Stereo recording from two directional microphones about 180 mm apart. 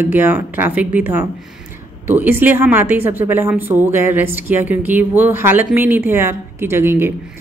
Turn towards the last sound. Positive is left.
turn(degrees=-15)  # may be behind; listen again after turning